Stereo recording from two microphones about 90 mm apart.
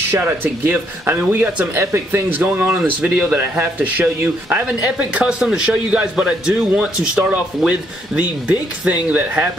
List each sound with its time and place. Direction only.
0.2 s speech: 20° right (ahead or behind)
2.8 s a man's voice: 10° right (ahead or behind)
4.8 s a man's voice: 10° right (ahead or behind)